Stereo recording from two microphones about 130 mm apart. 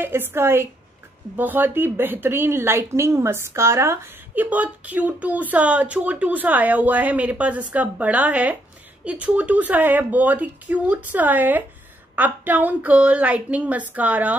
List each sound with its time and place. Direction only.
0.0 s a woman's voice: 15° right (ahead or behind)